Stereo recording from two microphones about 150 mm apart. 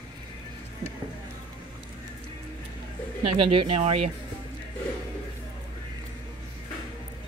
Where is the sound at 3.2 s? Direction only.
40° right (ahead or behind).